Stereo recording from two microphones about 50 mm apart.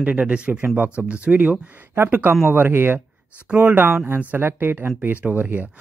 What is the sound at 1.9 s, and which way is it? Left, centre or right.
Speech, right.